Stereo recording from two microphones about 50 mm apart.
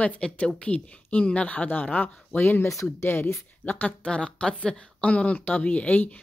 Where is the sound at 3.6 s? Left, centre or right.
Left.